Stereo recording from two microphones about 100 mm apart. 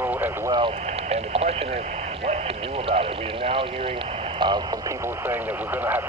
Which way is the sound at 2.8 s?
65° right (ahead or behind).